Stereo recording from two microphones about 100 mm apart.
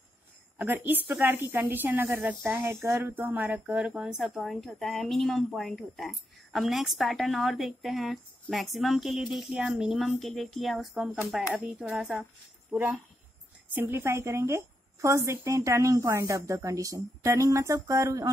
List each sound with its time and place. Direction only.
0.6 s a woman's voice: 15° right (ahead or behind)
12.7 s a woman's voice: 20° right (ahead or behind)